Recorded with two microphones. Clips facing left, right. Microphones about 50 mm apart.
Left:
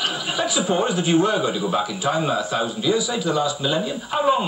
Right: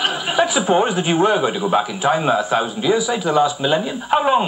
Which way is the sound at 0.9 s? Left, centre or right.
Right.